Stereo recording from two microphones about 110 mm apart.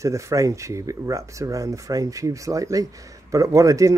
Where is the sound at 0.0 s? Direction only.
30° right (ahead or behind).